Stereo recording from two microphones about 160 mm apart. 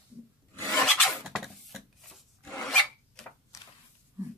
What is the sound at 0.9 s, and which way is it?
Filing, centre (ahead or behind).